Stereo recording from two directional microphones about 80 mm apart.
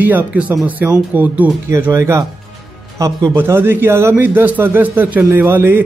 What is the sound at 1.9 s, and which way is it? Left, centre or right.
Speech, right.